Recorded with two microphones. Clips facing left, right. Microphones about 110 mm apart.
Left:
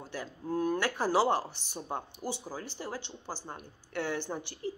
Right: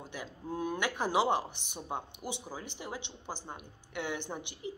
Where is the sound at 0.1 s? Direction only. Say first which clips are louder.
Left 6 dB; 15° right (ahead or behind).